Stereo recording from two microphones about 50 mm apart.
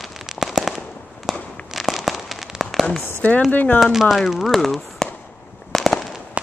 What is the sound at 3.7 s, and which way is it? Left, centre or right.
Speech, centre.